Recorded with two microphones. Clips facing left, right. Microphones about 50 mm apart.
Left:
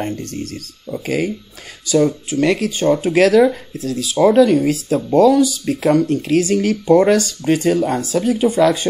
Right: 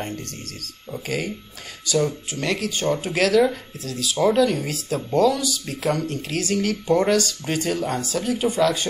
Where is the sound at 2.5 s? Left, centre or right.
Centre.